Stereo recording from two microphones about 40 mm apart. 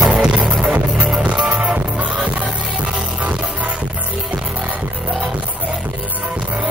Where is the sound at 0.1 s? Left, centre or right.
Right.